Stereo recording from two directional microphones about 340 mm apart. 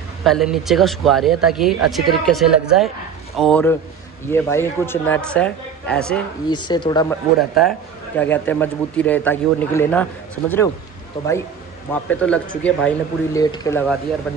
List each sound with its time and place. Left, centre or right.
0.2 s speech: centre
6.5 s speech: centre
7.3 s speech: centre
11.2 s speech: centre
11.9 s speech: centre